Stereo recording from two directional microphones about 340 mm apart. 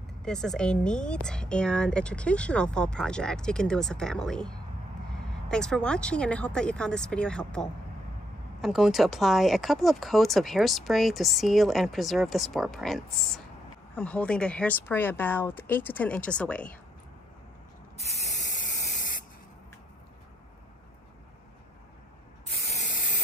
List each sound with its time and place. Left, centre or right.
0.2 s speech: centre
17.9 s spray: centre
22.7 s spray: left